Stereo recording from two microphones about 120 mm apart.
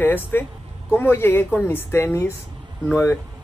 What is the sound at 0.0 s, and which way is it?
Speech, 15° left (ahead or behind).